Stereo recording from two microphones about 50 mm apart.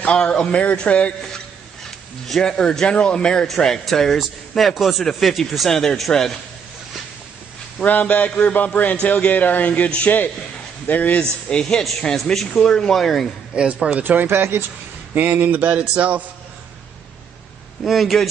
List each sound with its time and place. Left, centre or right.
0.0 s a man's voice: left
2.2 s speech: centre
3.4 s a man's voice: centre
5.7 s speech: centre
7.8 s a man's voice: left
10.9 s speech: left
11.1 s a man's voice: centre
13.5 s a man's voice: right
14.2 s speech: right
15.9 s a man's voice: right
17.8 s a man's voice: centre